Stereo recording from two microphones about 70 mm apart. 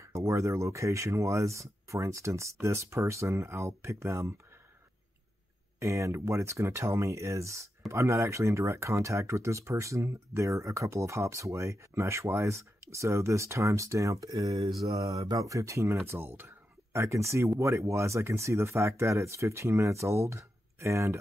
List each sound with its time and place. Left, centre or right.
0.0 s speech: right
5.8 s speech: right
16.1 s speech: right